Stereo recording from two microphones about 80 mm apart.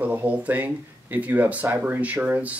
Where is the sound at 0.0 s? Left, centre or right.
Right.